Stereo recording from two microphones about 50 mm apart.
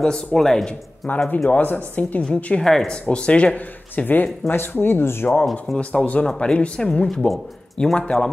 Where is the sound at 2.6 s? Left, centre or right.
Centre.